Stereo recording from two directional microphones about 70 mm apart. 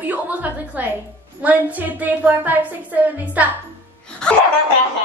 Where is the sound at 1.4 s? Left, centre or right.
Right.